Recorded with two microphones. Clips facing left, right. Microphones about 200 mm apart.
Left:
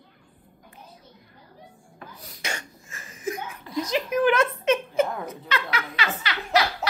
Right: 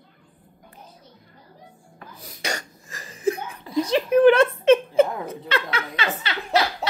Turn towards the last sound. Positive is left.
turn(degrees=-25)  # may be behind; listen again after turning